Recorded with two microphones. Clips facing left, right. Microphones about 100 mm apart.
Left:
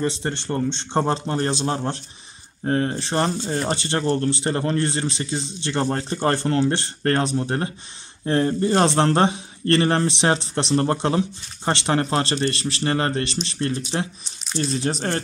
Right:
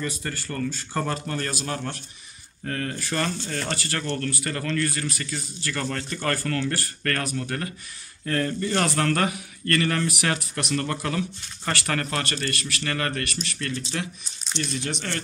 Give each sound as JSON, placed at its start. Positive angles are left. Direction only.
{"t": 0.0, "sound": "a man's voice", "side_deg": 30}